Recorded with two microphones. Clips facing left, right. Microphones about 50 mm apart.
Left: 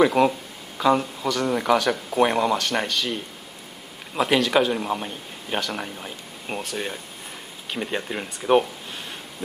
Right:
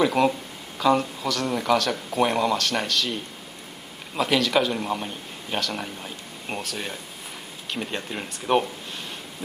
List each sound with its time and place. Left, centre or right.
0.2 s speech: centre